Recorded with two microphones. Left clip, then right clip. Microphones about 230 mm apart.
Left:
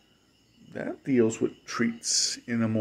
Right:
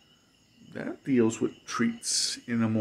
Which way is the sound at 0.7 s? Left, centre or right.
Centre.